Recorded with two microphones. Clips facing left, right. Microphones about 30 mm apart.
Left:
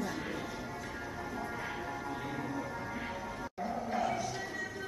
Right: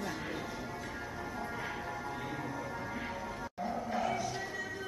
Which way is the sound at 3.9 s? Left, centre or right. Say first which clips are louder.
Left 1 dB; centre.